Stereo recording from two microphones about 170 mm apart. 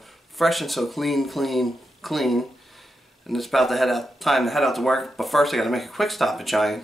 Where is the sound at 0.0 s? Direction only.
Centre (ahead or behind).